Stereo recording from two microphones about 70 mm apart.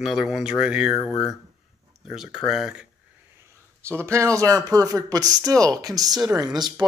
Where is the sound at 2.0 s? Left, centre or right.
Centre.